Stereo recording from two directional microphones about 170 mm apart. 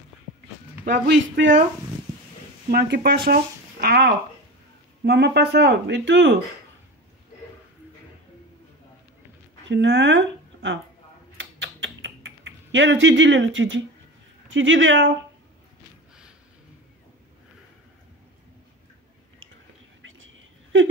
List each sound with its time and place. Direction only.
0.8 s speech: 85° right
2.7 s speech: 65° right (ahead or behind); by 6.3 s 90° right
9.7 s speech: 90° right
11.3 s typing: 90° right
14.5 s speech: 90° right